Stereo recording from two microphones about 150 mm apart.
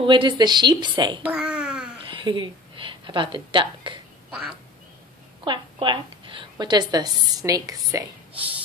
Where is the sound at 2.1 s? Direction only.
35° right (ahead or behind).